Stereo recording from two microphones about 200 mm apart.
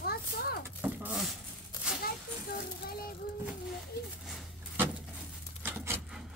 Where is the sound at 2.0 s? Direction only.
50° left (ahead or behind).